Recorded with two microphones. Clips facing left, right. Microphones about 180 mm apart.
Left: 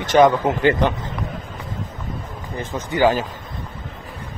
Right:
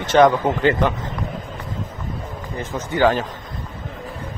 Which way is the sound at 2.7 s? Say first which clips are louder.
Even; 15° left (ahead or behind).